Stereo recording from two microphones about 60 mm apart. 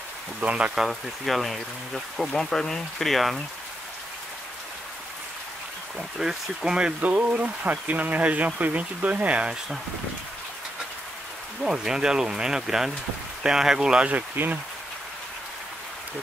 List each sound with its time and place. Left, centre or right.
0.4 s speech: right
0.7 s speech: centre
5.9 s speech: centre
7.0 s speech: right
11.6 s speech: centre
14.3 s speech: right